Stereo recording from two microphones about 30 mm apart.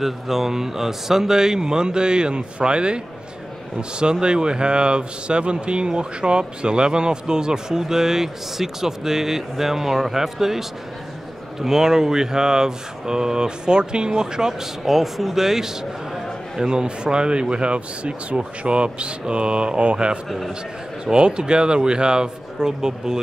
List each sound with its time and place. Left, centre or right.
0.0 s speech: centre; by 3.0 s right
4.0 s speech: right; by 10.6 s centre
11.6 s speech: centre
14.9 s speech: centre
16.6 s speech: right
20.2 s a man's voice: centre
21.0 s speech: right